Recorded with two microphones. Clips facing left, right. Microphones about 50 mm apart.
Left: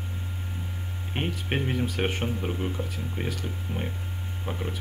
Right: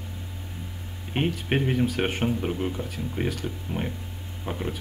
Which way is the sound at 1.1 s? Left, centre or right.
Centre.